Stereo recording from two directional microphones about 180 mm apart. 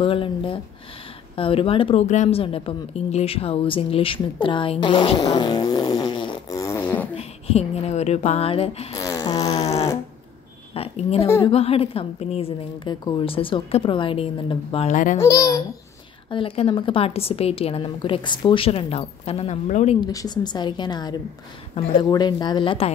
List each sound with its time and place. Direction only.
0.0 s speech: 30° left (ahead or behind); by 7.1 s 15° left (ahead or behind)
7.2 s speech: 35° left (ahead or behind)
8.9 s a sound: 20° left (ahead or behind)
10.7 s speech: 35° left (ahead or behind)
15.1 s speech: 20° left (ahead or behind); by 20.0 s 35° left (ahead or behind)
20.1 s speech: 20° left (ahead or behind)